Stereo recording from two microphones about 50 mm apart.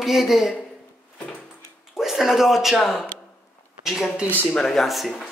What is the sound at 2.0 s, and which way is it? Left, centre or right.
Speech, centre.